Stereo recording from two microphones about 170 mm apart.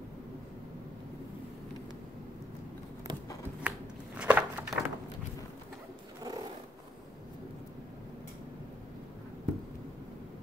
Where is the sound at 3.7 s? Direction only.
10° right (ahead or behind).